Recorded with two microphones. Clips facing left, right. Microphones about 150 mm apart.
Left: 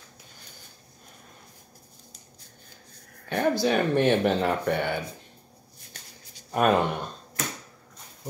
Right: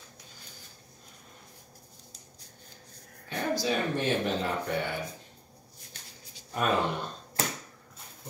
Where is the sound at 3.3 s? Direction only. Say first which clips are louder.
Left 6 dB; 65° left (ahead or behind).